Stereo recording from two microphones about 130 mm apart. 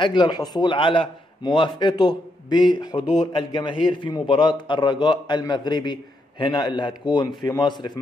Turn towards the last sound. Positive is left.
turn(degrees=35)  # may be behind; listen again after turning